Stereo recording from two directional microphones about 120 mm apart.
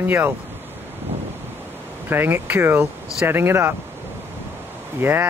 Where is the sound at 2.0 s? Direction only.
20° right (ahead or behind).